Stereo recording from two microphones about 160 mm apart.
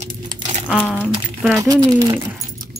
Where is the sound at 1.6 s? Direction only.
20° right (ahead or behind).